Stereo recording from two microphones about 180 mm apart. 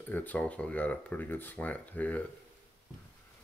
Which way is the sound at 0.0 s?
10° left (ahead or behind).